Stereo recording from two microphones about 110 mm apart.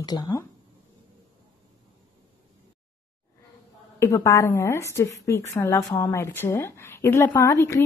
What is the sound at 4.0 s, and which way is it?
A woman's voice, 25° left (ahead or behind).